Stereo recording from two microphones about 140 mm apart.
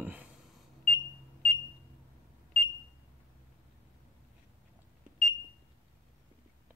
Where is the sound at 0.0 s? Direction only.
10° right (ahead or behind).